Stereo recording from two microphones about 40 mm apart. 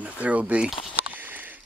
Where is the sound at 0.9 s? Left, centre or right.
Right.